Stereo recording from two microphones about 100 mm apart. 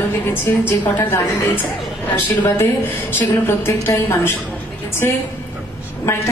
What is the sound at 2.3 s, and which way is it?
A woman's voice, 20° left (ahead or behind).